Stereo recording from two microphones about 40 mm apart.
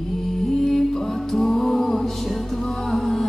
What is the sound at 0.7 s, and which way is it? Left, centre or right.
Music, centre.